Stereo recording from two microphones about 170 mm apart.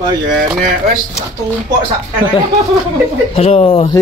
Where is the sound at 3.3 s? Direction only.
35° left (ahead or behind).